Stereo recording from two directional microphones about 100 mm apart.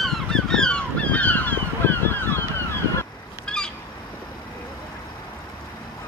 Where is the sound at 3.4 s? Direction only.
10° left (ahead or behind).